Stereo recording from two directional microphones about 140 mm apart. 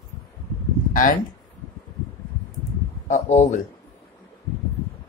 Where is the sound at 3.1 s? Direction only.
55° left (ahead or behind).